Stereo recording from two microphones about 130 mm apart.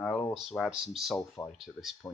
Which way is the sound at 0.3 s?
Centre (ahead or behind).